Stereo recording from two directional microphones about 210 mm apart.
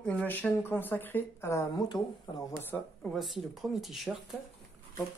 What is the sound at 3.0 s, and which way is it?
Speech, centre (ahead or behind).